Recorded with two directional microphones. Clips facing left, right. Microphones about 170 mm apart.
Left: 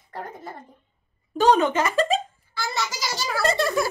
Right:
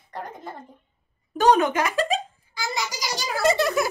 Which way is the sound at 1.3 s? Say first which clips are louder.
Even; 15° right (ahead or behind).